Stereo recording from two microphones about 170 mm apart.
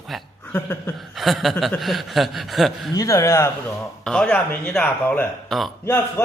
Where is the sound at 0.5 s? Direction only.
10° left (ahead or behind).